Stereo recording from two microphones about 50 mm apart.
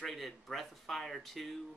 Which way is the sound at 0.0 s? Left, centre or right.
Centre.